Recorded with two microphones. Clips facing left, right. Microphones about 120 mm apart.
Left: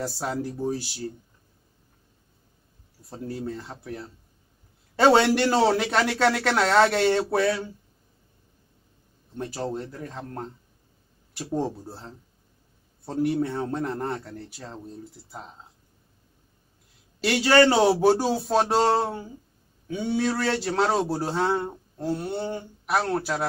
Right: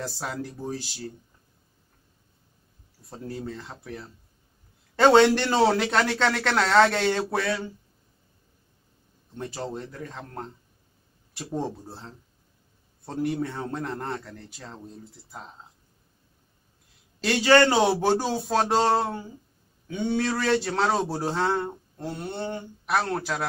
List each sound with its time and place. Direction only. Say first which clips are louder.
0.4 s speech: left 5 dB; 10° left (ahead or behind)
3.1 s speech: left 2 dB; 5° left (ahead or behind)
9.4 s speech: left 3 dB; 5° left (ahead or behind)
17.2 s speech: even; 5° left (ahead or behind)